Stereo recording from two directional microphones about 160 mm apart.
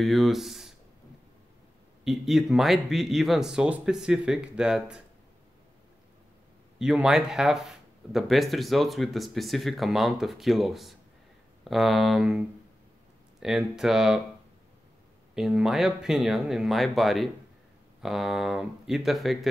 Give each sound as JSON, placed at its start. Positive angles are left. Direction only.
{"t": 0.0, "sound": "speech", "side_deg": 0}
{"t": 2.0, "sound": "speech", "side_deg": 0}
{"t": 6.8, "sound": "speech", "side_deg": -5}
{"t": 15.3, "sound": "speech", "side_deg": -5}